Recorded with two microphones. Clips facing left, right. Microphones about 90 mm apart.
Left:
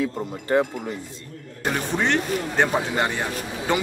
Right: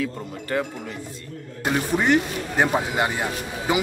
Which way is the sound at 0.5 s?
25° left (ahead or behind).